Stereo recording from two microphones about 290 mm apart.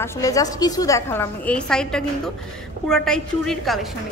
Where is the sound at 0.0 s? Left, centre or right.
Centre.